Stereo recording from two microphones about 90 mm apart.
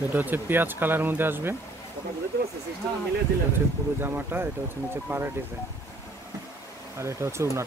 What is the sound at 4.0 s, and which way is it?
Speech, 25° right (ahead or behind).